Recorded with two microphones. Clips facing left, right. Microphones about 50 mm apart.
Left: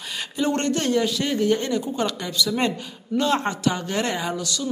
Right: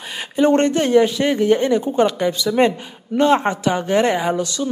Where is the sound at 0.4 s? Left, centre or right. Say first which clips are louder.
Right 8 dB; right.